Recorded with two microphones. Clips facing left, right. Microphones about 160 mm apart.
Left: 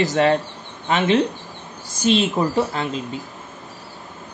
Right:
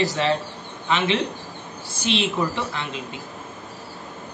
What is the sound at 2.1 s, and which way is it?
Speech, 45° left (ahead or behind).